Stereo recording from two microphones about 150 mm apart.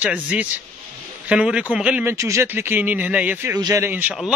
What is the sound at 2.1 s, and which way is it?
A man's voice, 20° right (ahead or behind).